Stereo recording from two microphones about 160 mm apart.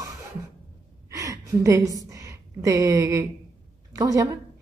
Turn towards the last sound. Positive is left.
turn(degrees=-20)  # may be behind; listen again after turning